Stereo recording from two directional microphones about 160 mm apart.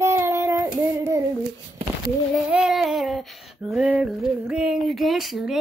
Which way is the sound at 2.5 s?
5° right (ahead or behind).